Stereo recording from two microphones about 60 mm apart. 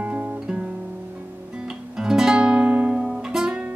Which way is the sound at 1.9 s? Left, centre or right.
Centre.